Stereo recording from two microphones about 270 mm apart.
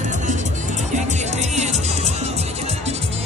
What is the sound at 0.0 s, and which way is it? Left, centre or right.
Music, right.